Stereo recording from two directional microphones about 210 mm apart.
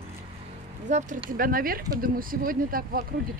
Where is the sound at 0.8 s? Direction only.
35° right (ahead or behind).